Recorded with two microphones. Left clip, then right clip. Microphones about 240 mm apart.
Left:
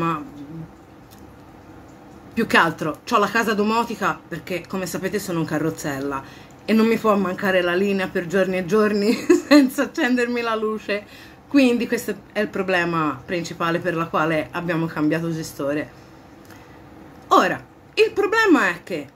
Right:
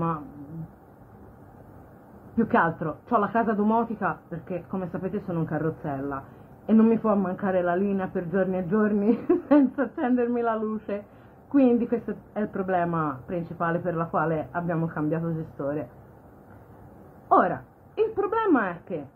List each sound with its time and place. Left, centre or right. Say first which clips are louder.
2.3 s a man's voice: left 5 dB; centre
17.3 s a sound: left 4 dB; centre
18.1 s a man's voice: left 4 dB; centre